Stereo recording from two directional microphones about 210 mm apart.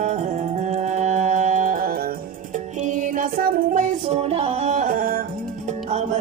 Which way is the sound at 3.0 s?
40° right (ahead or behind).